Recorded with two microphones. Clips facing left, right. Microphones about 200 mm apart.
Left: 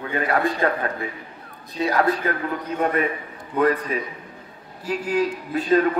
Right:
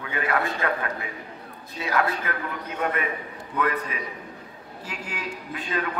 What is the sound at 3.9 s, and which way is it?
A man's voice, 35° left (ahead or behind).